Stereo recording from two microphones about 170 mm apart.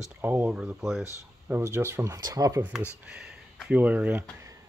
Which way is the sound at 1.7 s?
15° right (ahead or behind).